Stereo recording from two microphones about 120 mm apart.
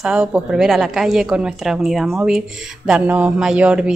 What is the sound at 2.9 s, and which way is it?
Mantra, 10° right (ahead or behind).